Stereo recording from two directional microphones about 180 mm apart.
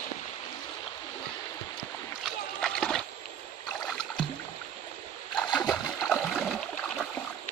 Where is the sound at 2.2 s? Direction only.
5° left (ahead or behind).